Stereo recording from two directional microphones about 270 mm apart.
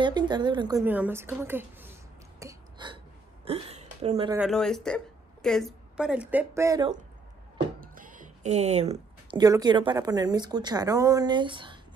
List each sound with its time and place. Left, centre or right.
0.0 s a woman's voice: centre
2.4 s a sound: centre
3.4 s speech: right
4.4 s a woman's voice: centre
7.8 s speech: right